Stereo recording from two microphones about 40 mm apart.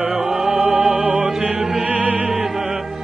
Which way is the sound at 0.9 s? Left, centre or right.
Right.